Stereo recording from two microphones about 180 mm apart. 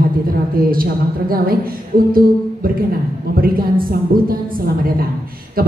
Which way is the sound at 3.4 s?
55° right (ahead or behind).